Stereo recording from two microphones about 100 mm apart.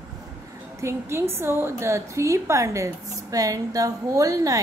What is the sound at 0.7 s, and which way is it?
A woman's voice, 25° right (ahead or behind).